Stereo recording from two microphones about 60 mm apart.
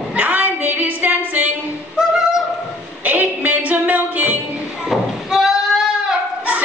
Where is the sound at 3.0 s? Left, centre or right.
Right.